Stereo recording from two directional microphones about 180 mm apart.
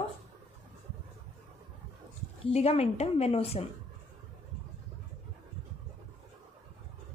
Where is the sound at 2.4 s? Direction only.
35° left (ahead or behind).